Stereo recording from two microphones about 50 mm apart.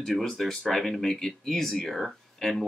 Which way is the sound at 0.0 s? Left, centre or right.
Centre.